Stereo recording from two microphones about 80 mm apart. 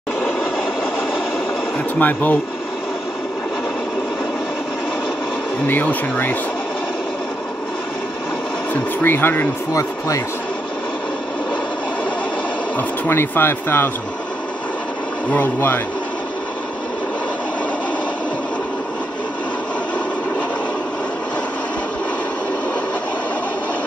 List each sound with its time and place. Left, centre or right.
2.0 s speech: left
5.7 s speech: left
9.0 s speech: left
9.8 s speech: left
12.7 s speech: left
15.3 s speech: left